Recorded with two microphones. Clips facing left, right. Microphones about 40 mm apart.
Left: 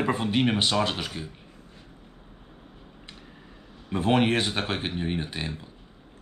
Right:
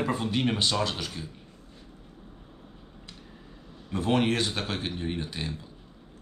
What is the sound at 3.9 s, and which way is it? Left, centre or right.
Speech, left.